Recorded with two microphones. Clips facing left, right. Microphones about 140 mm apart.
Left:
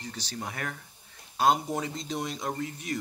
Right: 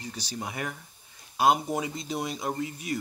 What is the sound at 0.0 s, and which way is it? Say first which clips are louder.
Speech: right 1 dB; 10° right (ahead or behind).